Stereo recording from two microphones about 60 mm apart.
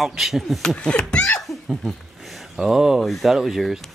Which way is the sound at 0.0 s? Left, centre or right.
Centre.